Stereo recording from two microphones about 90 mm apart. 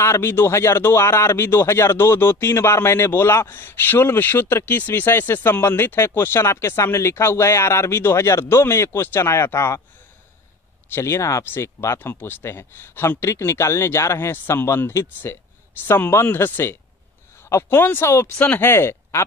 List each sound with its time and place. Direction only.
0.0 s a man's voice: 25° left (ahead or behind)
10.9 s a man's voice: 30° left (ahead or behind)
18.4 s speech: 15° left (ahead or behind)
18.7 s speech: 30° left (ahead or behind)